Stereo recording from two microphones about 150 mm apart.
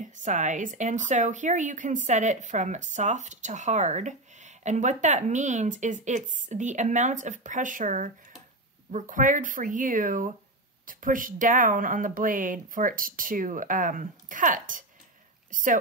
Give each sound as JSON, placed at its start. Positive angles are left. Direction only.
{"t": 0.0, "sound": "speech", "side_deg": -55}